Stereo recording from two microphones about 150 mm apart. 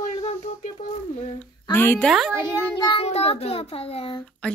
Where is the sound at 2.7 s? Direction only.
35° left (ahead or behind).